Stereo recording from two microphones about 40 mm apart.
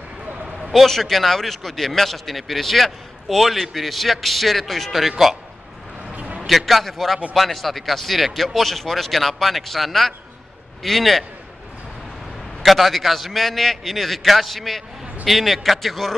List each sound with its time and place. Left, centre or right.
0.7 s a man's voice: centre
6.1 s a sound: right
6.4 s a man's voice: centre
12.6 s a man's voice: centre